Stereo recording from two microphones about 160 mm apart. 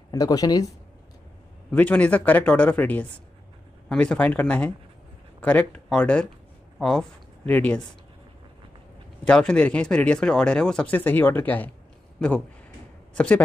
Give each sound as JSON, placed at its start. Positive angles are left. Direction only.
{"t": 0.1, "sound": "speech", "side_deg": 25}
{"t": 1.7, "sound": "a man's voice", "side_deg": 10}
{"t": 9.2, "sound": "speech", "side_deg": 5}
{"t": 13.1, "sound": "speech", "side_deg": 5}